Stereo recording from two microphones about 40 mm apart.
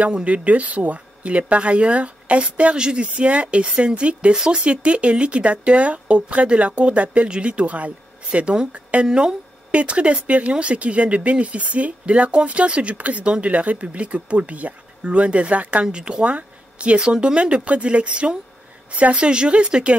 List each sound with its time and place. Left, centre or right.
0.0 s speech: right
9.0 s speech: centre
9.7 s speech: right
15.8 s speech: right